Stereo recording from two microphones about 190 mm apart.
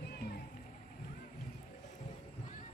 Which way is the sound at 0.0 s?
55° left (ahead or behind).